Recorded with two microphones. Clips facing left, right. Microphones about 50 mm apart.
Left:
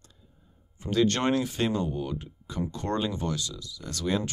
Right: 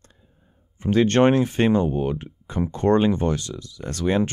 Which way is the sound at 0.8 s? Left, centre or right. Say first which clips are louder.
Right 8 dB; right.